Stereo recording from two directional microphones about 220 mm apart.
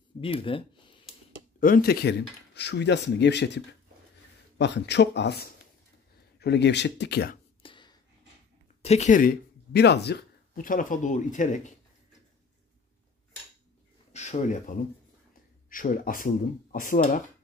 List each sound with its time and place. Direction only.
0.2 s speech: 25° left (ahead or behind)
1.6 s speech: 40° left (ahead or behind)
7.6 s a sound: 20° left (ahead or behind)
8.8 s speech: 30° left (ahead or behind)
14.1 s speech: 30° left (ahead or behind)